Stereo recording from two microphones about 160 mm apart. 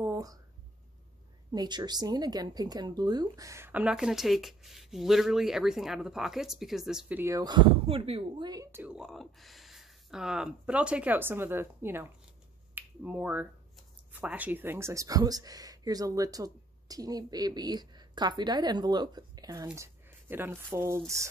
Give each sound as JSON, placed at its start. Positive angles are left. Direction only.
{"t": 0.0, "sound": "speech", "side_deg": -20}
{"t": 1.5, "sound": "speech", "side_deg": -25}
{"t": 8.7, "sound": "speech", "side_deg": -5}